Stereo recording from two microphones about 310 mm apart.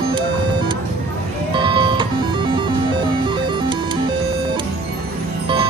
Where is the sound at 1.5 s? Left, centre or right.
Centre.